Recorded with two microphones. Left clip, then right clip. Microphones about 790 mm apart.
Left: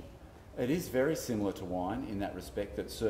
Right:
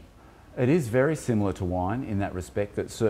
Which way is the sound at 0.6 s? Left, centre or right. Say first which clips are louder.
Right 8 dB; right.